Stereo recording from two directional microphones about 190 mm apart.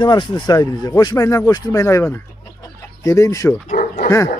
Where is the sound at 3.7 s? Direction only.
45° left (ahead or behind).